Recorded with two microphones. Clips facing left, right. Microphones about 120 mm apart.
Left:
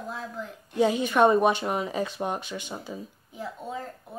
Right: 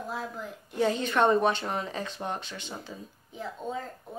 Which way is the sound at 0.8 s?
10° left (ahead or behind).